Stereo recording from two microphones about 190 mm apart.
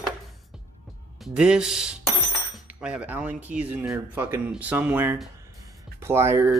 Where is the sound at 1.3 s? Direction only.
5° right (ahead or behind).